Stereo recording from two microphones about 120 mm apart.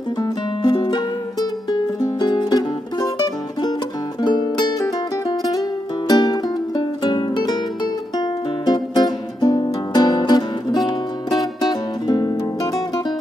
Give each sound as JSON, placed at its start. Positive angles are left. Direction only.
{"t": 0.2, "sound": "music", "side_deg": 35}
{"t": 4.2, "sound": "music", "side_deg": 35}